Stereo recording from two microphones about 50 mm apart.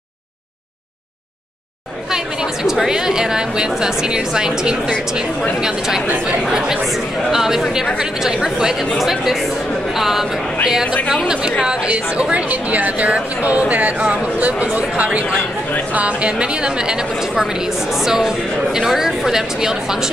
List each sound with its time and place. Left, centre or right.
2.0 s a woman's voice: centre
12.4 s a woman's voice: right; by 20.1 s centre